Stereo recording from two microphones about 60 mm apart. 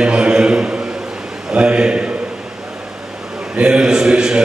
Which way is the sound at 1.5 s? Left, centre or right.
Centre.